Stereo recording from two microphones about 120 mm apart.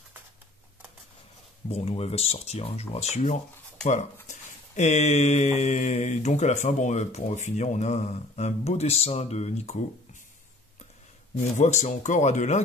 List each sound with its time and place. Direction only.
1.7 s speech: 60° left (ahead or behind)
3.8 s speech: 80° left
11.5 s speech: 80° left